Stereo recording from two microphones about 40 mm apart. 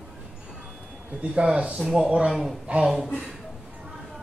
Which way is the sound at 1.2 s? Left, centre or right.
Right.